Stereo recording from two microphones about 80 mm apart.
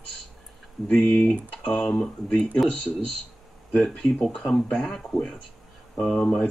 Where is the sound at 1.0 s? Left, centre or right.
Left.